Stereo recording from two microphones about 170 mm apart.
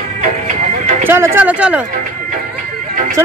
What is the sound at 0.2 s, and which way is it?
Music, 45° right (ahead or behind).